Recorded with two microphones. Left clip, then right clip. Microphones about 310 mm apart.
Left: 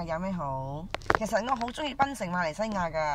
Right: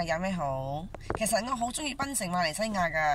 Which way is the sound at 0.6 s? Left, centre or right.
Centre.